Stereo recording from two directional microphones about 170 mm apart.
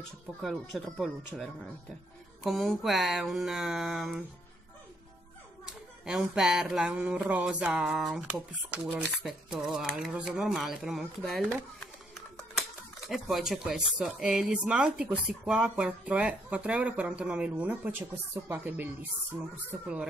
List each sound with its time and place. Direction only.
0.4 s speech: centre (ahead or behind)
6.0 s speech: 5° right (ahead or behind)
13.1 s speech: centre (ahead or behind)